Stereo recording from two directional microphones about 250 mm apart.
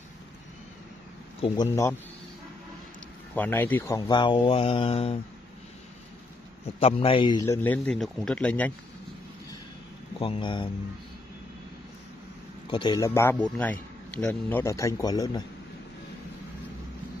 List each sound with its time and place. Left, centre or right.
1.4 s a man's voice: centre
3.3 s speech: centre; by 5.2 s left
6.8 s speech: left
7.4 s speech: centre
10.1 s speech: left
12.6 s a man's voice: centre